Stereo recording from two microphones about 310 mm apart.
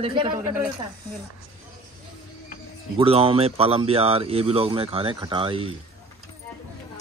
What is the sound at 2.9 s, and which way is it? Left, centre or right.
Speech, centre.